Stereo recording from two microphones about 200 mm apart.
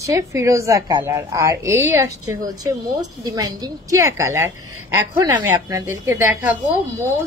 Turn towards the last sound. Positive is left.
turn(degrees=-10)  # may be behind; listen again after turning